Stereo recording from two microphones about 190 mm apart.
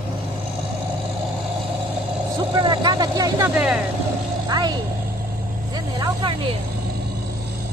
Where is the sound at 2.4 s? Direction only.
25° right (ahead or behind).